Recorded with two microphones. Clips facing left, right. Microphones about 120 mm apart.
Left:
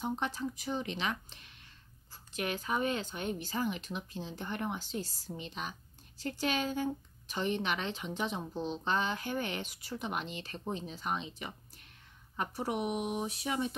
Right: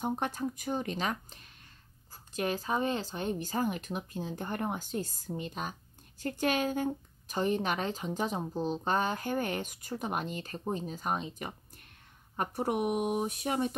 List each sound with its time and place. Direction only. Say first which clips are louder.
0.0 s speech: right 3 dB; 50° right (ahead or behind)